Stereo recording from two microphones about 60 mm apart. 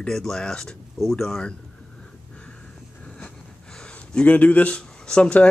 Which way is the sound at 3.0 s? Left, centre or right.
Centre.